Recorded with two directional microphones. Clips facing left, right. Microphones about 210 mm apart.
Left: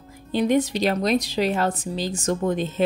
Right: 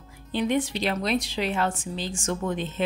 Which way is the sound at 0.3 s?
40° left (ahead or behind).